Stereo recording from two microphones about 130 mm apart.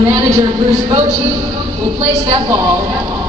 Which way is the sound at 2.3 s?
30° right (ahead or behind).